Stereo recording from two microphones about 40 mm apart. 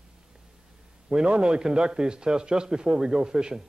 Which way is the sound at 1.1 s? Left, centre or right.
Right.